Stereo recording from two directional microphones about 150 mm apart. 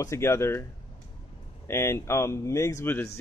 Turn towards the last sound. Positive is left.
turn(degrees=15)  # may be behind; listen again after turning